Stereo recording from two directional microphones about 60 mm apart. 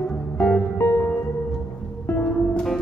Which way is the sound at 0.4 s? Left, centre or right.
Centre.